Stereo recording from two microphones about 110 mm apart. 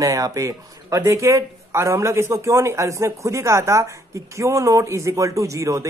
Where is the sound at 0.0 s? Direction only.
30° right (ahead or behind).